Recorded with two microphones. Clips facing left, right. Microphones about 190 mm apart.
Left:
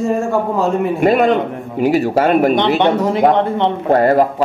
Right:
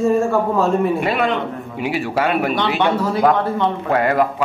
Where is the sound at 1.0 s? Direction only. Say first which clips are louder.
Left 7 dB; 45° left (ahead or behind).